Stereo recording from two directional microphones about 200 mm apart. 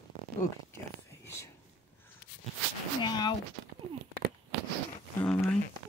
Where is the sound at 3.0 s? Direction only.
20° left (ahead or behind).